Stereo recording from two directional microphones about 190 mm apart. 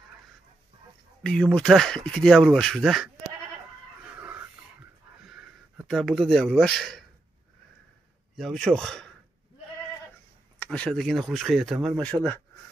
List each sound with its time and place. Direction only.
1.2 s speech: 5° left (ahead or behind)
4.2 s a sound: 10° right (ahead or behind)
8.4 s speech: 5° left (ahead or behind)
10.6 s speech: 5° left (ahead or behind)